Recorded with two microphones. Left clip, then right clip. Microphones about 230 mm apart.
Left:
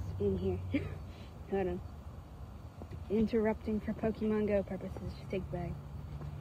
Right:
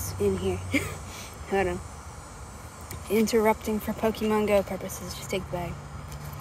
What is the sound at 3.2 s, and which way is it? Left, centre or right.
Speech, centre.